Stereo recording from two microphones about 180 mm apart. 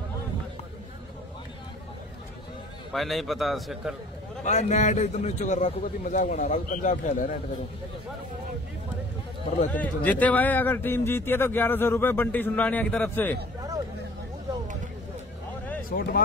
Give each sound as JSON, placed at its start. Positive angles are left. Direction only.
{"t": 2.9, "sound": "a man's voice", "side_deg": 0}
{"t": 4.5, "sound": "a man's voice", "side_deg": 40}
{"t": 9.7, "sound": "speech", "side_deg": 10}
{"t": 15.9, "sound": "speech", "side_deg": 50}